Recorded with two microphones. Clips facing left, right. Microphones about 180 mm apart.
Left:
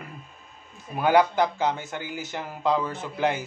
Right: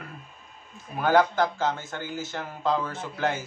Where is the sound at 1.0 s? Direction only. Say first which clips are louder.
Left 1 dB; 15° left (ahead or behind).